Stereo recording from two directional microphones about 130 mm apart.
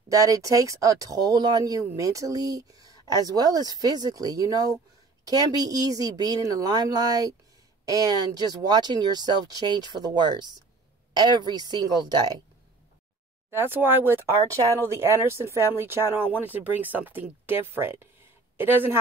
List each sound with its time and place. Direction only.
0.1 s speech: 25° right (ahead or behind)
13.5 s speech: 15° right (ahead or behind)